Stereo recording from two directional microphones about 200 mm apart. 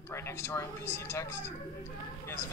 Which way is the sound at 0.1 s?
15° left (ahead or behind).